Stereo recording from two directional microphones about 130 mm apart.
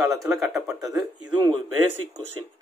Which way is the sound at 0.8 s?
30° right (ahead or behind).